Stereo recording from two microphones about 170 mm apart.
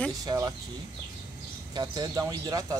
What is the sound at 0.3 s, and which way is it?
Speech, 20° right (ahead or behind).